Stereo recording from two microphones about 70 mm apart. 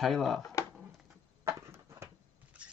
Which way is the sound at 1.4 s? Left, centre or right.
Right.